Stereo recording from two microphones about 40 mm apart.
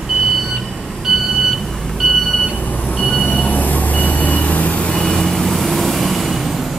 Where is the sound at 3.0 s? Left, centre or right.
Left.